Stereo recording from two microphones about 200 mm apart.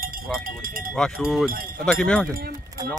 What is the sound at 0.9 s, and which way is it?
Speech, centre (ahead or behind).